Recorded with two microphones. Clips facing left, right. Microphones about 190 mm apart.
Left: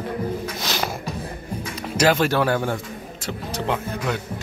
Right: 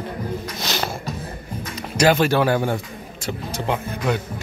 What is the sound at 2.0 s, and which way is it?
Speech, centre (ahead or behind).